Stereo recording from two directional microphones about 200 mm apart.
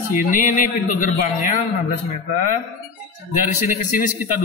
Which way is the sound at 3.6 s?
45° left (ahead or behind).